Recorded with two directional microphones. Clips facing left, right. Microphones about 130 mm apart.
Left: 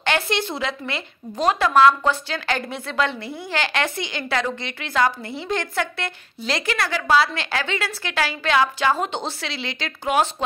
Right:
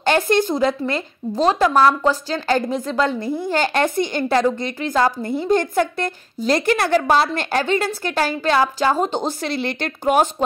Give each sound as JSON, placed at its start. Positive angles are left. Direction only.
{"t": 0.0, "sound": "a woman's voice", "side_deg": -45}